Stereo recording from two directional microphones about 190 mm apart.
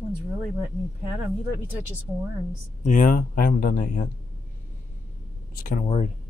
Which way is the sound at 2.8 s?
45° left (ahead or behind).